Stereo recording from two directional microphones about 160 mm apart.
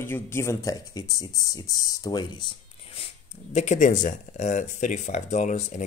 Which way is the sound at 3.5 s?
50° left (ahead or behind).